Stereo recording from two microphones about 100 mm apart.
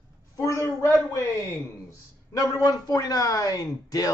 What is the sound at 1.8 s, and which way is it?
Speech, 35° left (ahead or behind).